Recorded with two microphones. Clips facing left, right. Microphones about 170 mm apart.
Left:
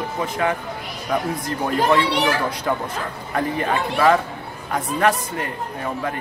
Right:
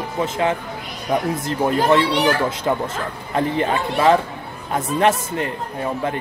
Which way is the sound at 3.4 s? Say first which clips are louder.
Right 2 dB; 25° right (ahead or behind).